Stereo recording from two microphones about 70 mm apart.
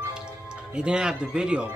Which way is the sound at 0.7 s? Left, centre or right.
Centre.